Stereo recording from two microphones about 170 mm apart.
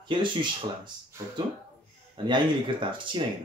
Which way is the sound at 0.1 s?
30° right (ahead or behind).